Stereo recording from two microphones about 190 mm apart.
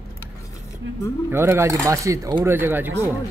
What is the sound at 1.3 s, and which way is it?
Speech, 15° right (ahead or behind).